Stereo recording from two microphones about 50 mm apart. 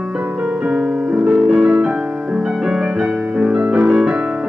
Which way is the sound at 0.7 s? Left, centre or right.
Right.